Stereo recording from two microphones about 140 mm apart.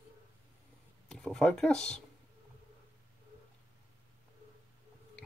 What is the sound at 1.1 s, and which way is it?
Speech, 5° left (ahead or behind).